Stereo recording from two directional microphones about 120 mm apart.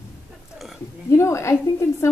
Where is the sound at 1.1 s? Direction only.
25° left (ahead or behind).